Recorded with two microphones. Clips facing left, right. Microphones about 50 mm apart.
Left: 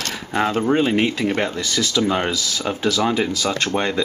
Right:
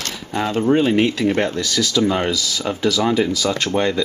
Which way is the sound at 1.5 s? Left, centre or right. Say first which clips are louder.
Right 2 dB; left.